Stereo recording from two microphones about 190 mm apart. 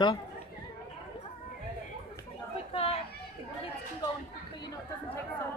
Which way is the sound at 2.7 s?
30° left (ahead or behind).